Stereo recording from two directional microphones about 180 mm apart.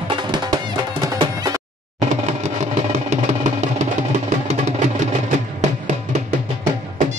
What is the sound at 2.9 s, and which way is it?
Music, 40° right (ahead or behind).